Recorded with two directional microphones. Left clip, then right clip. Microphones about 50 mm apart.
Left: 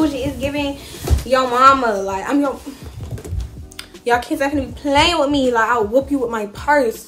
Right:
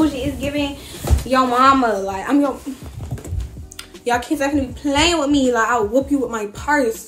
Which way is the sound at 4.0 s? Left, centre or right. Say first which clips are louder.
Left 2 dB; left.